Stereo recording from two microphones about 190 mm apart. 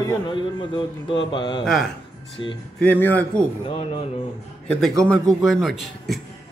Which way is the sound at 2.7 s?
10° left (ahead or behind).